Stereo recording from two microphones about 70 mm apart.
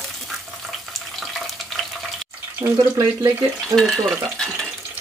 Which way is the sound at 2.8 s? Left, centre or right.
Right.